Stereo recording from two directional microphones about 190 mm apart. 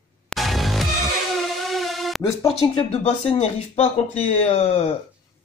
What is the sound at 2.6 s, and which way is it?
Speech, 30° left (ahead or behind).